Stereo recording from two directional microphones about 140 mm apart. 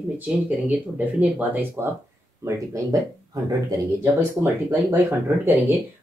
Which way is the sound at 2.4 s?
25° right (ahead or behind).